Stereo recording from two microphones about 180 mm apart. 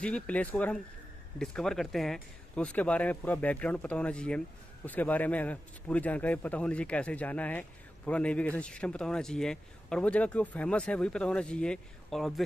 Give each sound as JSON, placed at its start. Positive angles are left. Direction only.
{"t": 0.0, "sound": "a man's voice", "side_deg": 5}